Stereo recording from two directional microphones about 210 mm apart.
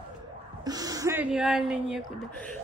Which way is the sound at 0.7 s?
15° right (ahead or behind).